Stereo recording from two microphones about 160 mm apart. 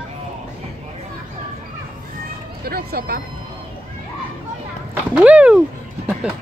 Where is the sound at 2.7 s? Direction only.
70° right (ahead or behind).